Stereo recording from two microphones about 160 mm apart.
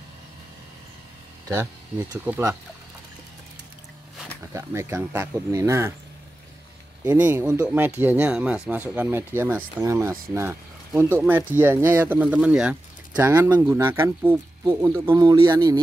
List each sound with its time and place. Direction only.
1.5 s speech: 15° right (ahead or behind)
4.6 s speech: 15° right (ahead or behind)
7.1 s speech: 10° right (ahead or behind)
15.1 s speech: 25° right (ahead or behind)